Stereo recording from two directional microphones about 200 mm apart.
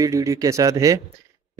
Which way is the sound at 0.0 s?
15° right (ahead or behind).